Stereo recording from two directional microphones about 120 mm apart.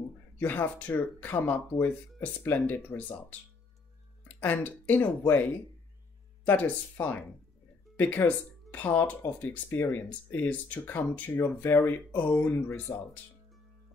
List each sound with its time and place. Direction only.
0.4 s speech: 15° left (ahead or behind)
4.4 s speech: 15° left (ahead or behind)